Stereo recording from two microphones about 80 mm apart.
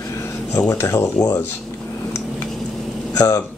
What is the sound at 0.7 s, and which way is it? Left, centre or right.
Speech, left.